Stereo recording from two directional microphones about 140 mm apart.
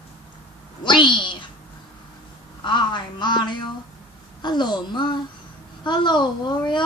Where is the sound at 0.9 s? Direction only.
35° left (ahead or behind).